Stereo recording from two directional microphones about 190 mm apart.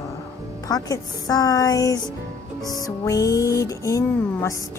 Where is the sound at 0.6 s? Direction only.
20° left (ahead or behind).